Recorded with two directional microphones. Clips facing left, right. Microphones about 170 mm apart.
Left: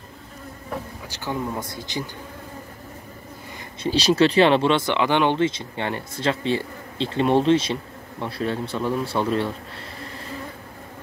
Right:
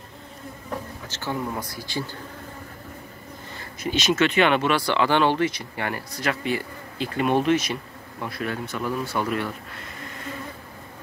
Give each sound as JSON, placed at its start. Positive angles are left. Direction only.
{"t": 1.0, "sound": "speech", "side_deg": 15}
{"t": 3.8, "sound": "speech", "side_deg": 35}